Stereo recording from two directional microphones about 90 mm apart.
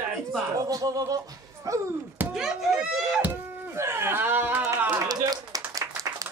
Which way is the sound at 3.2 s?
25° right (ahead or behind).